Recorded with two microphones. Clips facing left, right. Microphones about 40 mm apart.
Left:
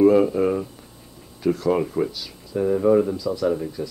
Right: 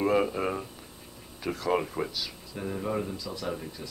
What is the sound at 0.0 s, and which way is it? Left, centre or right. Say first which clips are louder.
Speech: left 10 dB; centre.